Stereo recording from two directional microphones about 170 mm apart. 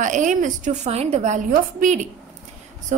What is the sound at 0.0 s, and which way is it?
A woman's voice, 50° right (ahead or behind).